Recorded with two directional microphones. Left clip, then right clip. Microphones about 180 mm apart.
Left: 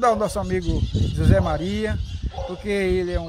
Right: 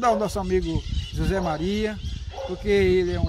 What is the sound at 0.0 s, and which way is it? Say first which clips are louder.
Speech: left 2 dB; 20° left (ahead or behind).